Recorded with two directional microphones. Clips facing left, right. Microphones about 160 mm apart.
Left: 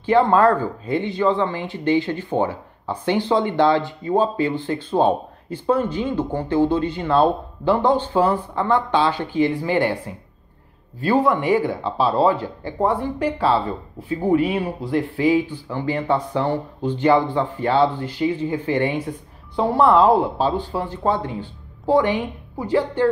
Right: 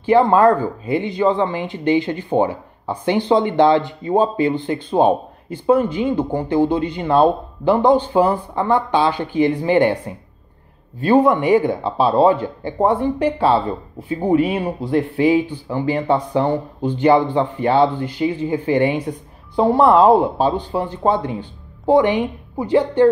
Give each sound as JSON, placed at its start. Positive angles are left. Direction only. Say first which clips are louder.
{"t": 0.0, "sound": "speech", "louder": "right 3 dB", "side_deg": -10}
{"t": 11.0, "sound": "speech", "louder": "right 4 dB", "side_deg": -20}